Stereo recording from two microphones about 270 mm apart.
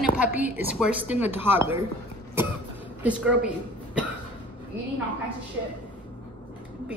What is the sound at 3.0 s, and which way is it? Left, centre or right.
Speech, centre.